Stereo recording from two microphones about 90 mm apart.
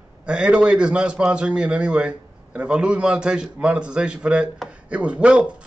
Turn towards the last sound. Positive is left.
turn(degrees=-10)  # may be behind; listen again after turning